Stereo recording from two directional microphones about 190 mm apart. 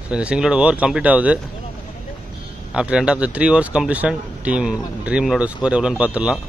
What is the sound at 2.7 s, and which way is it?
Speech, 5° right (ahead or behind).